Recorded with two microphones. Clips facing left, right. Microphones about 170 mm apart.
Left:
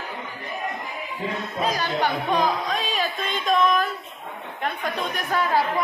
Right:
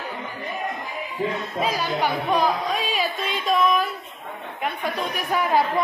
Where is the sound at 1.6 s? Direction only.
5° right (ahead or behind).